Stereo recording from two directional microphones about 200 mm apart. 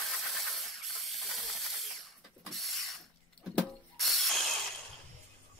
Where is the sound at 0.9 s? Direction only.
Centre (ahead or behind).